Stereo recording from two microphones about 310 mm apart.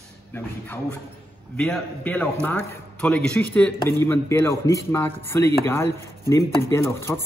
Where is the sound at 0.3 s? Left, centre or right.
Centre.